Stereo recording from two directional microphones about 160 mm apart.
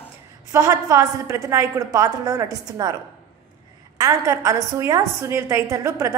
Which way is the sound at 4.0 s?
20° right (ahead or behind).